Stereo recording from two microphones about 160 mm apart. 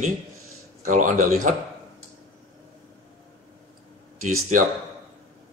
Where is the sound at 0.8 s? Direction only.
55° right (ahead or behind).